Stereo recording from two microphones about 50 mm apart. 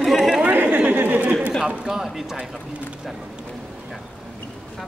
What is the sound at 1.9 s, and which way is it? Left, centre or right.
Speech, centre.